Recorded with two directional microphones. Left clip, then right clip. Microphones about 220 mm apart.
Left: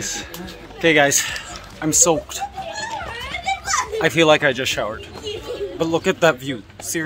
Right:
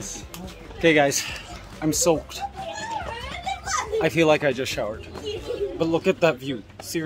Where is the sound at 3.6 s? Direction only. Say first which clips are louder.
Left 1 dB; 15° left (ahead or behind).